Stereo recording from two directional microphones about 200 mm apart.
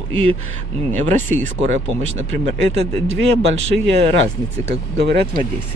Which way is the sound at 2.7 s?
30° right (ahead or behind).